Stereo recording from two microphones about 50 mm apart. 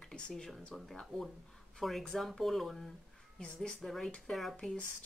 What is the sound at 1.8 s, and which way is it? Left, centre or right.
Speech, centre.